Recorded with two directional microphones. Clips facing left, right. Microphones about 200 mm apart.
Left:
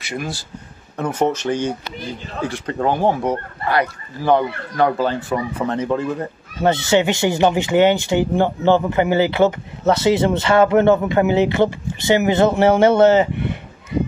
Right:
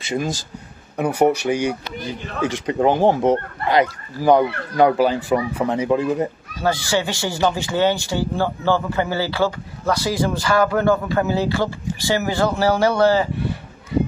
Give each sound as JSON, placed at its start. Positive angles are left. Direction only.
{"t": 0.9, "sound": "speech", "side_deg": -15}
{"t": 6.6, "sound": "speech", "side_deg": 25}